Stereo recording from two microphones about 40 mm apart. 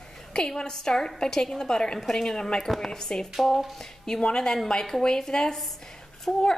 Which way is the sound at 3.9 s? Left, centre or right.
Centre.